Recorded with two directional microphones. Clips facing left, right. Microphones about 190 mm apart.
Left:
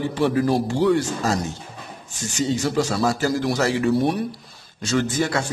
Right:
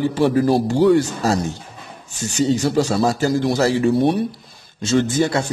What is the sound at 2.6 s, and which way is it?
Speech, 30° right (ahead or behind).